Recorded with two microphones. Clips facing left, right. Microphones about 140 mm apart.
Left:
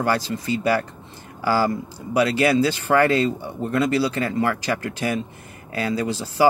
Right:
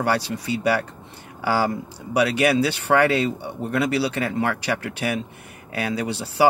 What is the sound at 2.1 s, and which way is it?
Speech, 65° right (ahead or behind).